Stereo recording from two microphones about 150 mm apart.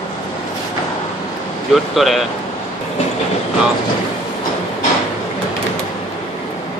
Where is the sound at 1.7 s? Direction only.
Centre (ahead or behind).